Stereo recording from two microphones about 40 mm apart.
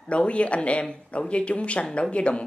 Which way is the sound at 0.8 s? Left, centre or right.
Left.